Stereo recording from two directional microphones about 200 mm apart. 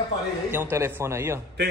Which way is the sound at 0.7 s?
15° right (ahead or behind).